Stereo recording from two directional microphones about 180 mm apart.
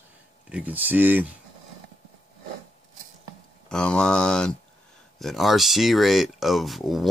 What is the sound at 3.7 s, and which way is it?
Speech, 5° left (ahead or behind).